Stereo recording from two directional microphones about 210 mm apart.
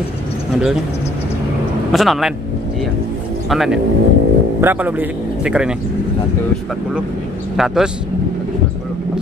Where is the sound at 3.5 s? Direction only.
Centre (ahead or behind).